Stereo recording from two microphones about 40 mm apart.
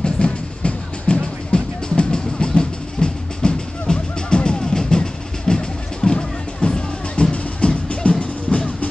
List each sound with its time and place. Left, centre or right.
0.0 s music: left